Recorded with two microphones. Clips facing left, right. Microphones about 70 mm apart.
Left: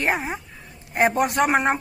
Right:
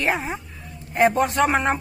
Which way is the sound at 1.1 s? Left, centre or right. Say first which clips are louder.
Even; centre.